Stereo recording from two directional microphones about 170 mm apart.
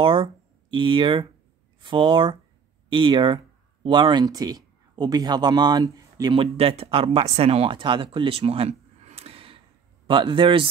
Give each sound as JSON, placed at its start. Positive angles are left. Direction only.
{"t": 0.0, "sound": "a man's voice", "side_deg": -30}